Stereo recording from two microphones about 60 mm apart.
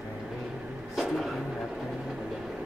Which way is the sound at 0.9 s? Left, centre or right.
Centre.